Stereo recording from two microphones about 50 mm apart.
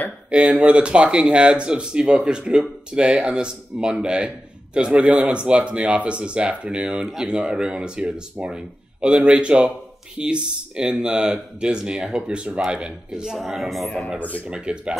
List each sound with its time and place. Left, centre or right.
0.3 s speech: right
13.5 s a man's voice: centre
14.5 s speech: right